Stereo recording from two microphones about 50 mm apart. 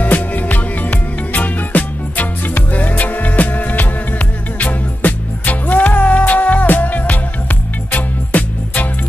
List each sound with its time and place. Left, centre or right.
0.0 s music: left